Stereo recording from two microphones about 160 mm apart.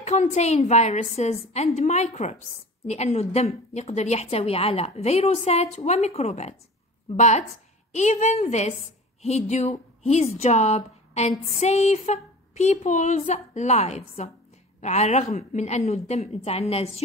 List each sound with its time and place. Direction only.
0.0 s a woman's voice: 45° left (ahead or behind)